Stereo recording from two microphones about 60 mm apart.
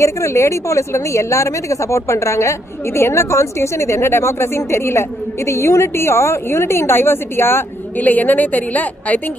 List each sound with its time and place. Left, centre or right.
0.0 s speech: left
8.0 s a woman's voice: left